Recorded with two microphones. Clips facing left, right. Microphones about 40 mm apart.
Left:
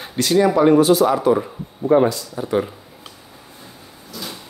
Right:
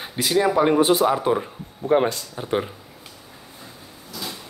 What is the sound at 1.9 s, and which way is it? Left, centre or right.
Speech, right.